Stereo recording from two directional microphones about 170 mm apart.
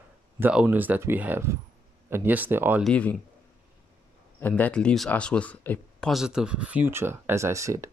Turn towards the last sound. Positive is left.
turn(degrees=-20)  # may be behind; listen again after turning